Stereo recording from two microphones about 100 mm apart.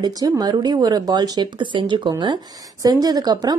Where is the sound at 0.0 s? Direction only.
40° right (ahead or behind).